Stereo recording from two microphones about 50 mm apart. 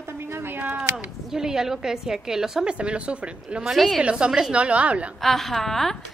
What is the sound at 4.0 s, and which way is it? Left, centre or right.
A woman's voice, right.